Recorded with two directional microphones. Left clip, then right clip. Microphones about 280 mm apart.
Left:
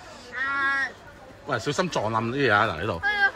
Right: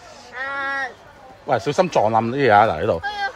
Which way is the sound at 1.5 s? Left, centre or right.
Right.